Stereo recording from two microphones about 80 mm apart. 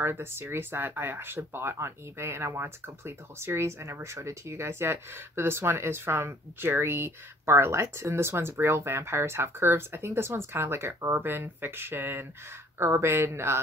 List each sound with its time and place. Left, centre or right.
0.0 s speech: right